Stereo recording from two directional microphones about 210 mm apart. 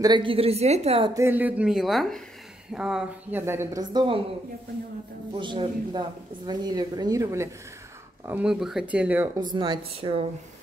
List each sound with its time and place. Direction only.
0.0 s a woman's voice: 20° right (ahead or behind)
1.1 s speech: 10° right (ahead or behind)
5.3 s a woman's voice: 25° right (ahead or behind); by 9.3 s 5° right (ahead or behind)
9.4 s a woman's voice: 20° right (ahead or behind)